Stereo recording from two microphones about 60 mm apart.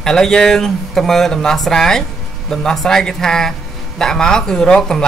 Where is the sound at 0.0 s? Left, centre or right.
Centre.